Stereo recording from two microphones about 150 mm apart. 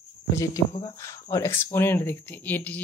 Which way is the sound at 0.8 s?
20° left (ahead or behind).